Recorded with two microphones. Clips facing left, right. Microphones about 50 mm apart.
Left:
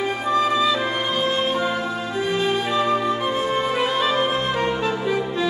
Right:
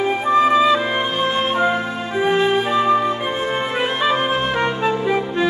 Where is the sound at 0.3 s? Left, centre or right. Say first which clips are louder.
Right 5 dB; right.